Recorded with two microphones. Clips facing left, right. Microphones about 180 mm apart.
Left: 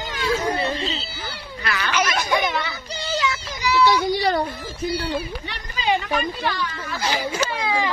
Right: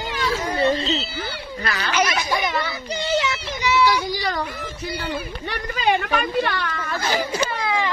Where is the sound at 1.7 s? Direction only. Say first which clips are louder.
Left 1 dB; 35° right (ahead or behind).